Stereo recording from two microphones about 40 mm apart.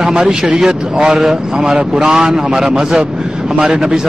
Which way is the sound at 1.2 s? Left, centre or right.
Centre.